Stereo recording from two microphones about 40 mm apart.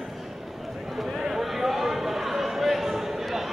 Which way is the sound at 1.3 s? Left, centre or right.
Centre.